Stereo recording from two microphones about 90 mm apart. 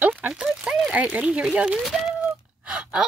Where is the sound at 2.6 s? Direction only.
10° right (ahead or behind).